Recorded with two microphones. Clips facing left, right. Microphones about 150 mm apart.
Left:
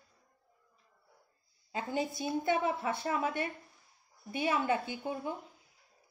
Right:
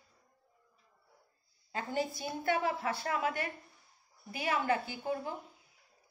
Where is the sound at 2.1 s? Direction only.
20° left (ahead or behind).